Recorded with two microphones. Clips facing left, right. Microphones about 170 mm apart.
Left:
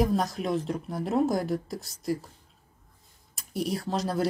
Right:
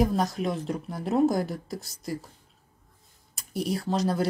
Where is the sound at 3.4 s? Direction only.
Centre (ahead or behind).